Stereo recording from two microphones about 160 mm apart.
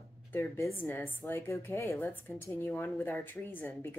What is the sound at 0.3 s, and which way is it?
A woman's voice, 15° left (ahead or behind).